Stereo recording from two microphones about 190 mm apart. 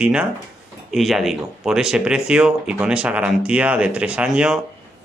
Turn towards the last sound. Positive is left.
turn(degrees=-5)  # may be behind; listen again after turning